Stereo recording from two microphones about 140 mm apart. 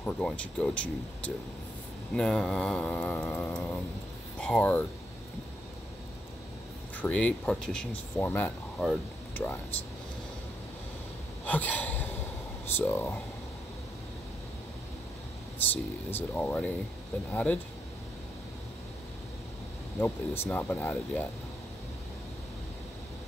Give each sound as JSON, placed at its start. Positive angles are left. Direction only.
{"t": 0.0, "sound": "speech", "side_deg": 10}
{"t": 7.0, "sound": "speech", "side_deg": 10}
{"t": 11.4, "sound": "a sound", "side_deg": 10}
{"t": 12.6, "sound": "speech", "side_deg": 15}
{"t": 15.7, "sound": "speech", "side_deg": 15}
{"t": 20.0, "sound": "speech", "side_deg": 10}